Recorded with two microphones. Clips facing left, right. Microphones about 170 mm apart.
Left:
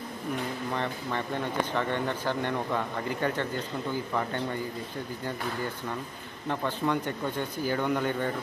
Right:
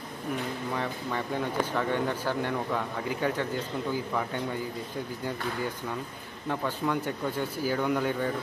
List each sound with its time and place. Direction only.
0.7 s speech: 5° right (ahead or behind)
6.5 s speech: 5° right (ahead or behind)